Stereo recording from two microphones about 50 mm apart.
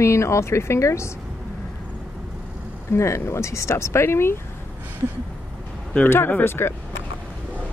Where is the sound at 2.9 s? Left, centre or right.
Left.